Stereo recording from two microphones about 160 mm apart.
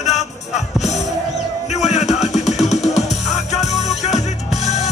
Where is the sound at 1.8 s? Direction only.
45° left (ahead or behind).